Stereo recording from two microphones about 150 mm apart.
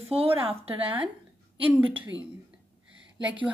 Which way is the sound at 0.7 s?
10° right (ahead or behind).